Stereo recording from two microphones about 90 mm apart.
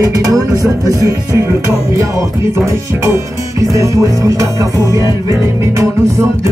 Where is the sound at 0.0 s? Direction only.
40° right (ahead or behind).